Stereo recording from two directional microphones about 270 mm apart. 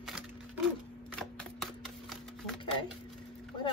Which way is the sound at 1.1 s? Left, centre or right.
Centre.